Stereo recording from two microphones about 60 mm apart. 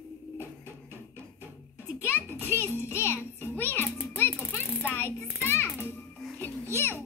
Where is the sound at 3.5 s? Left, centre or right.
Left.